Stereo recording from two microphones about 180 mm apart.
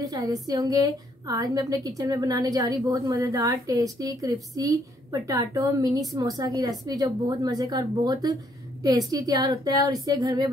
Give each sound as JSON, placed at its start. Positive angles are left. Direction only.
{"t": 0.0, "sound": "a woman's voice", "side_deg": -20}